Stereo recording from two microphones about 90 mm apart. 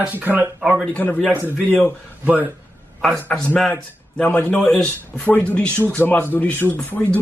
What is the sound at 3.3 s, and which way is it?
A man's voice, 10° left (ahead or behind).